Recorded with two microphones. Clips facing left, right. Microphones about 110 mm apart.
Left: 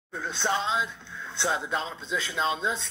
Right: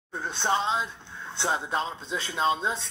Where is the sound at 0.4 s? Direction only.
45° right (ahead or behind).